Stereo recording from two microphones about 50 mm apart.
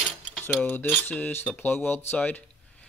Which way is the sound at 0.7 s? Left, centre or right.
Left.